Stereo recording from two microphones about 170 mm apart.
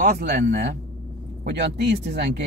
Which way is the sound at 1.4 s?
85° right.